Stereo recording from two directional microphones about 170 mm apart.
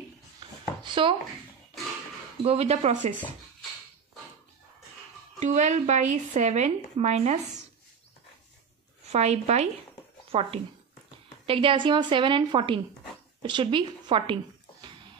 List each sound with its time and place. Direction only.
0.4 s a sound: 30° right (ahead or behind)
2.4 s speech: 35° right (ahead or behind)
5.4 s speech: 45° right (ahead or behind)
9.0 s a woman's voice: 40° right (ahead or behind)